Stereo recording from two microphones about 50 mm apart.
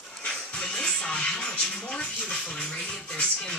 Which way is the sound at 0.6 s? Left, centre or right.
Centre.